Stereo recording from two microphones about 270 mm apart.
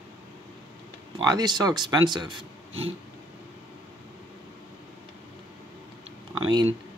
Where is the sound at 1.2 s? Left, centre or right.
Centre.